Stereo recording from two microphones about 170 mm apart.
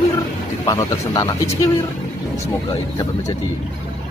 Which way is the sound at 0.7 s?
25° left (ahead or behind).